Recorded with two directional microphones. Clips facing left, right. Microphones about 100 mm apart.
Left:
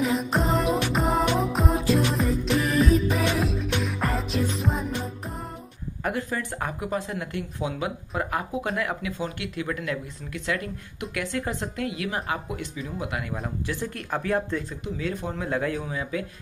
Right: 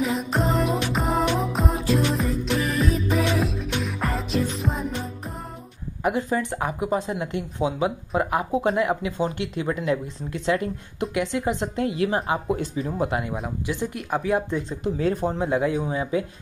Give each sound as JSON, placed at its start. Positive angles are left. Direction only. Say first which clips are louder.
{"t": 0.0, "sound": "music", "louder": "even", "side_deg": 0}
{"t": 6.0, "sound": "speech", "louder": "right 5 dB", "side_deg": -20}
{"t": 13.7, "sound": "speech", "louder": "right 5 dB", "side_deg": -15}
{"t": 15.0, "sound": "speech", "louder": "right 7 dB", "side_deg": -35}